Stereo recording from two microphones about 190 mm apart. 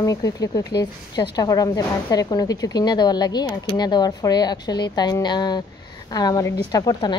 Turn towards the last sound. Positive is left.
turn(degrees=20)  # may be behind; listen again after turning